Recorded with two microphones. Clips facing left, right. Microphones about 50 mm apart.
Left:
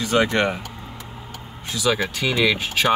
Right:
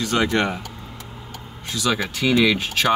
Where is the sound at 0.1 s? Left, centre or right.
Centre.